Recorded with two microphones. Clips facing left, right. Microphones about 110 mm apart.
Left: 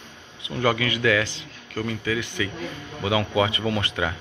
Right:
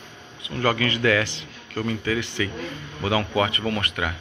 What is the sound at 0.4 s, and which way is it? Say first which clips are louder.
A man's voice: even; 15° left (ahead or behind).